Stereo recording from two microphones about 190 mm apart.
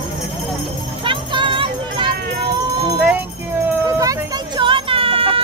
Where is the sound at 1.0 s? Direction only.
25° right (ahead or behind).